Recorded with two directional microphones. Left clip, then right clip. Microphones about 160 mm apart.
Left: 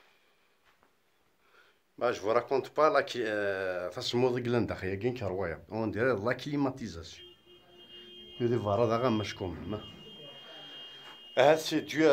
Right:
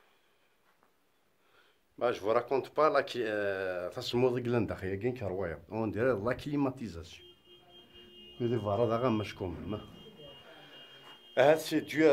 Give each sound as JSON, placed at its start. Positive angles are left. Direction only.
{"t": 1.5, "sound": "speech", "side_deg": 0}
{"t": 8.4, "sound": "speech", "side_deg": 10}
{"t": 10.4, "sound": "a sound", "side_deg": 0}